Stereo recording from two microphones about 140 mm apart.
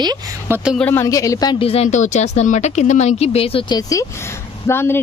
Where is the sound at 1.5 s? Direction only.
45° left (ahead or behind).